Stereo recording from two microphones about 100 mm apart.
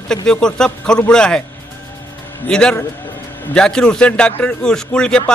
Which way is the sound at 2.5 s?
5° left (ahead or behind).